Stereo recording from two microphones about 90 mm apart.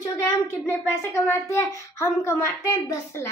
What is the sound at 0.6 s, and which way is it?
A woman's voice, 25° left (ahead or behind).